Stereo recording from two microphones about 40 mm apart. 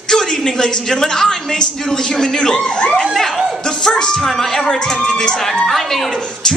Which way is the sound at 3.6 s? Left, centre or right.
Centre.